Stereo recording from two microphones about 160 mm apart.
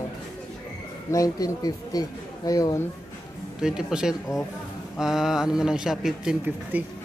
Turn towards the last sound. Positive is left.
turn(degrees=-5)  # may be behind; listen again after turning